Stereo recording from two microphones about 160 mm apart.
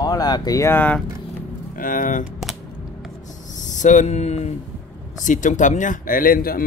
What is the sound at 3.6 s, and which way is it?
A man's voice, 50° left (ahead or behind).